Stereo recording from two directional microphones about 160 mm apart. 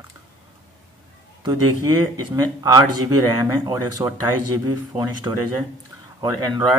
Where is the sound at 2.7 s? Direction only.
25° right (ahead or behind).